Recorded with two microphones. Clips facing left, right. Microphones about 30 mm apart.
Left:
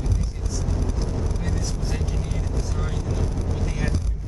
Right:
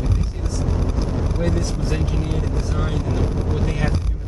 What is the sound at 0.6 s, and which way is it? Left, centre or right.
Vehicle, right.